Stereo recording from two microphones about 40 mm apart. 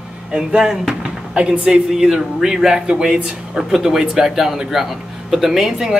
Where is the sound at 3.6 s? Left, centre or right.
Centre.